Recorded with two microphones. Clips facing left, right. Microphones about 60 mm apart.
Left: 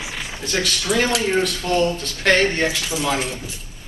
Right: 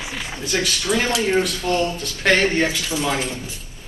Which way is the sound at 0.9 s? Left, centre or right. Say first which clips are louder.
Left 1 dB; centre.